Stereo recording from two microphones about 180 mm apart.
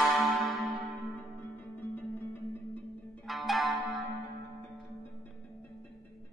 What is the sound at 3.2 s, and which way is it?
Music, centre (ahead or behind).